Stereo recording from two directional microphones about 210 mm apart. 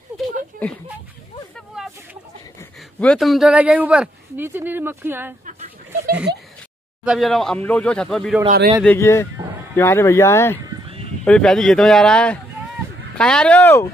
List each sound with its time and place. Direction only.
3.0 s speech: centre (ahead or behind)
5.5 s a sound: 35° right (ahead or behind)
7.1 s speech: centre (ahead or behind)
8.5 s a man's voice: 40° right (ahead or behind)
8.8 s speech: 10° left (ahead or behind)
10.6 s a sound: 15° right (ahead or behind)
11.2 s speech: 5° left (ahead or behind)